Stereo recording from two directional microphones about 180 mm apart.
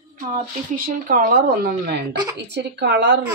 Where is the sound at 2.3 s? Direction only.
70° right (ahead or behind).